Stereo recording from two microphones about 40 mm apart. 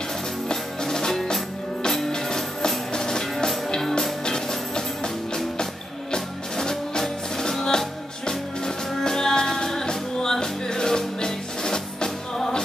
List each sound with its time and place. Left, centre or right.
0.5 s music: centre